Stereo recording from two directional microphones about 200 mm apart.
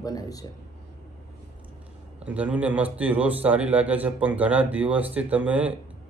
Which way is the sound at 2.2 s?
5° right (ahead or behind).